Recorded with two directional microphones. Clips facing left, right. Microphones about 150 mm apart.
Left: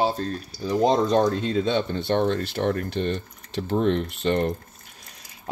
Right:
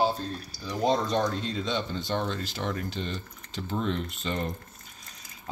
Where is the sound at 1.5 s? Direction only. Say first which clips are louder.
Left 7 dB; 55° left (ahead or behind).